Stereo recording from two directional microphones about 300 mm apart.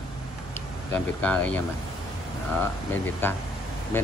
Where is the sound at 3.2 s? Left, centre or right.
Centre.